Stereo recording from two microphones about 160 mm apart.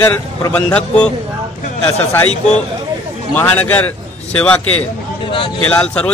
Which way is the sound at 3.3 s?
10° left (ahead or behind).